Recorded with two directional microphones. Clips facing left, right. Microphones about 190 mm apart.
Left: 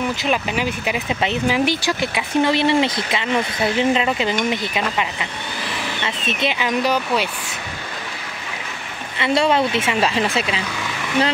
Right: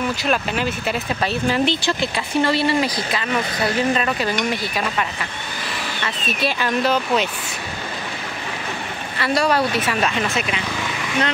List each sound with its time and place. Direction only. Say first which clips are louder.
0.2 s speech: even; 10° left (ahead or behind)
6.0 s speech: even; 20° left (ahead or behind)
9.2 s speech: left 2 dB; 25° left (ahead or behind)